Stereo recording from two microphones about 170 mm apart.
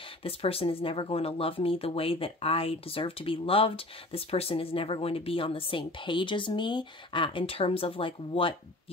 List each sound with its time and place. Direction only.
0.2 s speech: 35° left (ahead or behind)